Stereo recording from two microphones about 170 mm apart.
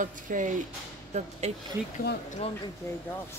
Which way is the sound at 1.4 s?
40° right (ahead or behind).